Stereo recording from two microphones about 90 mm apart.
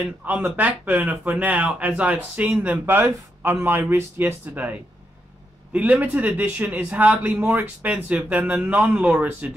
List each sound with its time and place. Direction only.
0.0 s a man's voice: 15° right (ahead or behind)